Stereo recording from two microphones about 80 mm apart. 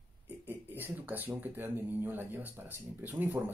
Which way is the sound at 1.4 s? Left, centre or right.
Right.